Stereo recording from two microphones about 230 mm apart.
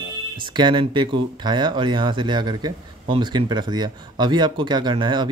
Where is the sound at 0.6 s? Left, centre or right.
Centre.